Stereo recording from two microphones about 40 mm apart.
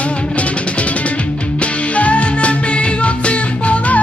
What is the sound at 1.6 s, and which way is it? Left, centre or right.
Music, left.